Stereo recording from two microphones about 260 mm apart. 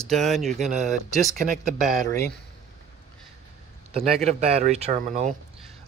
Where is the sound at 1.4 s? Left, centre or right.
Right.